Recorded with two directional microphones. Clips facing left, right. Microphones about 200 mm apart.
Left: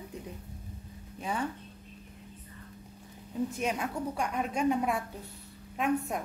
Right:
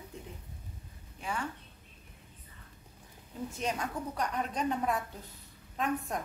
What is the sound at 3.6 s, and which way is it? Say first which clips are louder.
A woman's voice: left 3 dB; 10° left (ahead or behind).